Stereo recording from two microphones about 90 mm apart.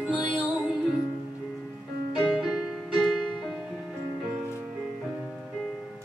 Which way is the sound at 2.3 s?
5° right (ahead or behind).